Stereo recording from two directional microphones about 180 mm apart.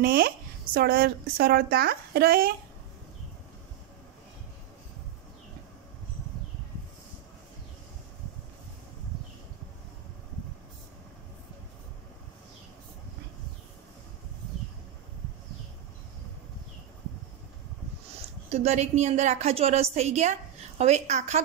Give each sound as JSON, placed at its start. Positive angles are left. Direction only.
{"t": 0.0, "sound": "a woman's voice", "side_deg": -55}
{"t": 18.5, "sound": "a woman's voice", "side_deg": -40}